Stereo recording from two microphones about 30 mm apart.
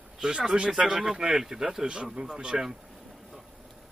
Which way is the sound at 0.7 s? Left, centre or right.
Right.